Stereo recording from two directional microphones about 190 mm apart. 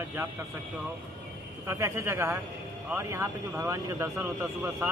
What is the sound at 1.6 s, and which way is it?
Speech, 15° right (ahead or behind).